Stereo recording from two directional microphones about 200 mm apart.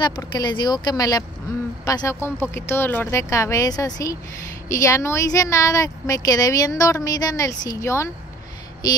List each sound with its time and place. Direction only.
0.0 s speech: 20° left (ahead or behind)